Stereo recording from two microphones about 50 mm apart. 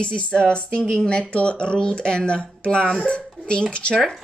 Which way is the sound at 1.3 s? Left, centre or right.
Left.